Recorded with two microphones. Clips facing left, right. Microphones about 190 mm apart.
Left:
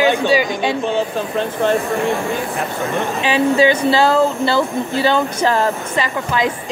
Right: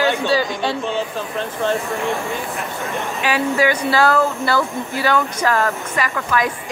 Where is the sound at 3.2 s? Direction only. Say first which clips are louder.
Left 4 dB; 25° left (ahead or behind).